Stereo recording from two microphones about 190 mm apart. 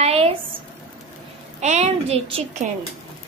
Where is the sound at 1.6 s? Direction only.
35° right (ahead or behind).